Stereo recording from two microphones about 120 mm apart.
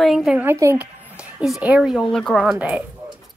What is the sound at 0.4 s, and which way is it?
Speech, 20° right (ahead or behind).